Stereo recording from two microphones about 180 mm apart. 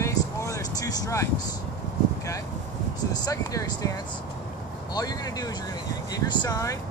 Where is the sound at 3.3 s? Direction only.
20° left (ahead or behind).